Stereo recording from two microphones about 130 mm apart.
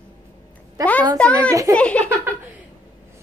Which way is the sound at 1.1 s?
10° left (ahead or behind).